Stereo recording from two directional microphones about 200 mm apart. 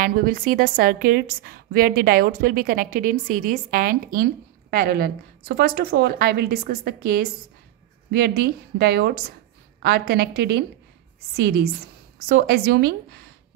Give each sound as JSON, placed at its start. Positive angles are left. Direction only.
{"t": 0.0, "sound": "a woman's voice", "side_deg": -45}